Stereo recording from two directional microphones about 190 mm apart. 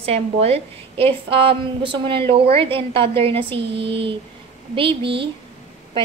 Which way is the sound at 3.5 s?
65° right (ahead or behind).